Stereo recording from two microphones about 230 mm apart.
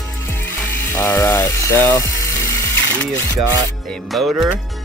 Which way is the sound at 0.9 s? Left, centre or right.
Centre.